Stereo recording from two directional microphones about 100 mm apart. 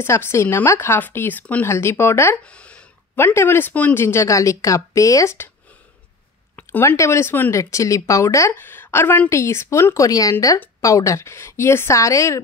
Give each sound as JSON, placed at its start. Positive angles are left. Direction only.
{"t": 0.0, "sound": "speech", "side_deg": 25}
{"t": 2.3, "sound": "speech", "side_deg": 10}
{"t": 3.2, "sound": "speech", "side_deg": 25}
{"t": 6.5, "sound": "a sound", "side_deg": 20}
{"t": 7.0, "sound": "speech", "side_deg": 25}
{"t": 8.5, "sound": "speech", "side_deg": 20}